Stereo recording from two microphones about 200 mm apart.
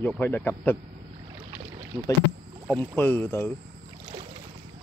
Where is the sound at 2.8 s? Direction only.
10° left (ahead or behind).